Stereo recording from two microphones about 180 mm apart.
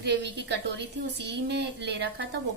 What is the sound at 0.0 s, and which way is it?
Speech, 70° right (ahead or behind).